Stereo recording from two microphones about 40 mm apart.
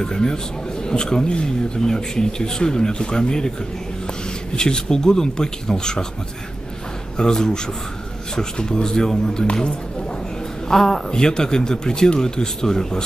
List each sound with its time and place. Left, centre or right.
0.0 s speech: centre
4.6 s speech: centre
7.2 s speech: centre
10.7 s a man's voice: centre
11.1 s speech: centre